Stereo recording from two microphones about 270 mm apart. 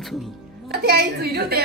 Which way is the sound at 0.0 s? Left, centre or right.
Centre.